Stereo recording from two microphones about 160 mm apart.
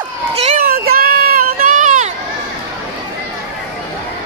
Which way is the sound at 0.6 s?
70° right (ahead or behind).